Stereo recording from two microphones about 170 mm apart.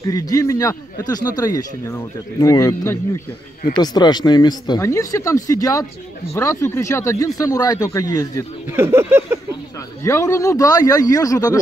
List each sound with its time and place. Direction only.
0.0 s speech: 20° left (ahead or behind)
8.6 s speech: 15° right (ahead or behind)
10.0 s speech: 15° left (ahead or behind)